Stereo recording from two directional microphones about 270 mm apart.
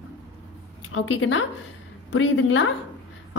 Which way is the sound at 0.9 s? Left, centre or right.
Left.